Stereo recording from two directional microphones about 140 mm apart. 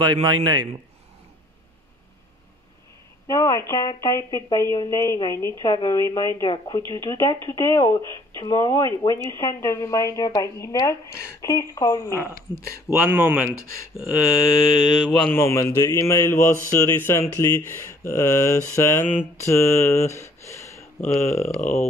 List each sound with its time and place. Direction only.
0.0 s a man's voice: 35° right (ahead or behind)
3.3 s speech: 25° left (ahead or behind)
12.5 s speech: 30° left (ahead or behind)
12.9 s speech: 15° right (ahead or behind)
15.3 s speech: 20° left (ahead or behind)
21.5 s a sound: 55° left (ahead or behind)